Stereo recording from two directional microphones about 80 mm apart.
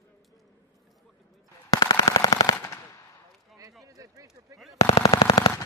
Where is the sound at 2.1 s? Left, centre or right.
Left.